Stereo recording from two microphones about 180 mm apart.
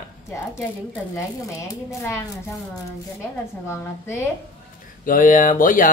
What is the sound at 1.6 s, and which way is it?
Speech, 15° left (ahead or behind).